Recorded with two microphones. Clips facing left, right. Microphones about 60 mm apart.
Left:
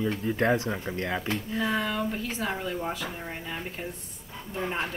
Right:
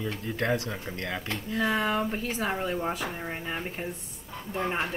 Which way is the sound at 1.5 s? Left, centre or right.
Centre.